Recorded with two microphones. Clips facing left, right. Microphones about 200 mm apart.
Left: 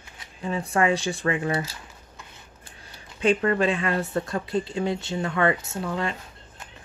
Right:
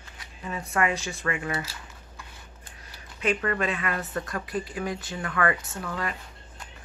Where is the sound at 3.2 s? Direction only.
30° left (ahead or behind).